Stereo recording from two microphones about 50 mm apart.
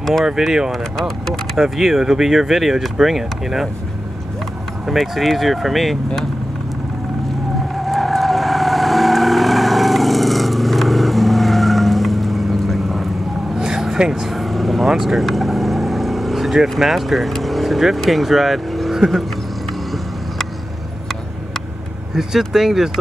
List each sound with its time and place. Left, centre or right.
0.2 s speech: centre
0.9 s speech: centre
1.6 s speech: centre
4.8 s speech: centre
7.7 s vehicle: centre
14.3 s vehicle: centre
22.1 s speech: centre